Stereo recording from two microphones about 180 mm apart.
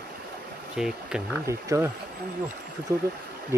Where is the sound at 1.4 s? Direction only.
15° right (ahead or behind).